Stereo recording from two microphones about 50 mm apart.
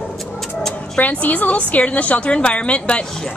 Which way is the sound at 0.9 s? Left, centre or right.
Left.